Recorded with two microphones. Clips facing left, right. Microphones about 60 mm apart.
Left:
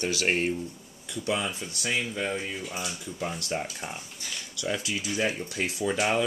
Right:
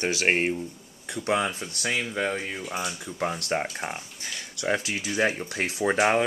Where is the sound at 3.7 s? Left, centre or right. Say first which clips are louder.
Right 4 dB; right.